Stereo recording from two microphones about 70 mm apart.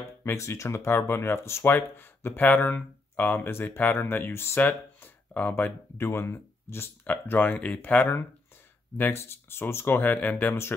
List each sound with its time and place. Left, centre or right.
0.2 s speech: left
4.6 s speech: left
5.9 s speech: left
8.9 s speech: left